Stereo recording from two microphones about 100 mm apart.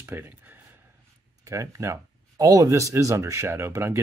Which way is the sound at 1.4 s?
30° right (ahead or behind).